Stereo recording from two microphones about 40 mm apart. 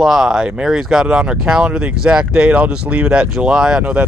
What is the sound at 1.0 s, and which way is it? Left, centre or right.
Speech, right.